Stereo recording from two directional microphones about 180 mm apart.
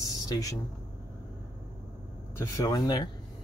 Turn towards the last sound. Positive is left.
turn(degrees=20)  # may be behind; listen again after turning